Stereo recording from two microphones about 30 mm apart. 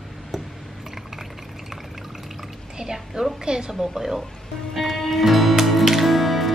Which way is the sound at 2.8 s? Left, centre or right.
Right.